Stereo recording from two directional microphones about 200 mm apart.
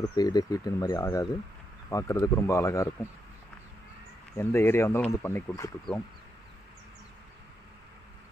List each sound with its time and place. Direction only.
0.1 s speech: 20° left (ahead or behind)
4.4 s speech: 10° left (ahead or behind)